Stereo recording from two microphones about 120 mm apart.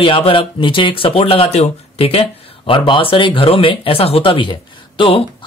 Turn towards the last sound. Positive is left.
turn(degrees=45)  # may be behind; listen again after turning